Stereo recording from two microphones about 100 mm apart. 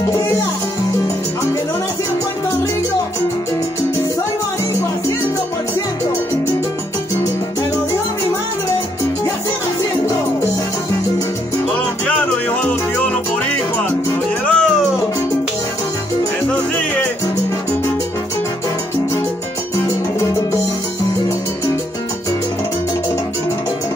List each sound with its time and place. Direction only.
12.1 s music: 15° left (ahead or behind)